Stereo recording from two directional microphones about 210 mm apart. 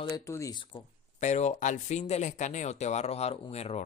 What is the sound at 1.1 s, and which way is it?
Speech, 35° left (ahead or behind).